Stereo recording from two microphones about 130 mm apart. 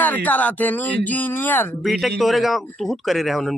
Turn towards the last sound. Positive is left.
turn(degrees=0)  # may be behind; listen again after turning